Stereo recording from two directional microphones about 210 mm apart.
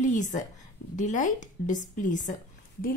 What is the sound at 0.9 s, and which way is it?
A woman's voice, 35° left (ahead or behind).